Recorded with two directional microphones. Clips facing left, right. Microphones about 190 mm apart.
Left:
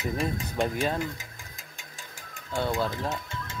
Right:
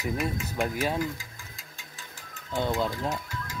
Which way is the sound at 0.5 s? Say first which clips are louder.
Left 1 dB; 5° right (ahead or behind).